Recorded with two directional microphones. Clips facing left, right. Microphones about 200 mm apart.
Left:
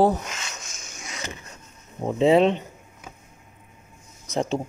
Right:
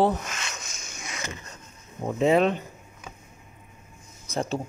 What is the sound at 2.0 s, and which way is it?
Speech, 30° left (ahead or behind).